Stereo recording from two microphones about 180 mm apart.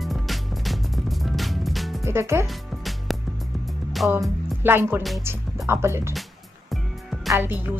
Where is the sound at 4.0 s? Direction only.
Centre (ahead or behind).